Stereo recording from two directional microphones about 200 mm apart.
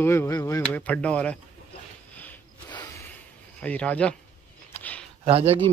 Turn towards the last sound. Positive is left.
turn(degrees=-30)  # may be behind; listen again after turning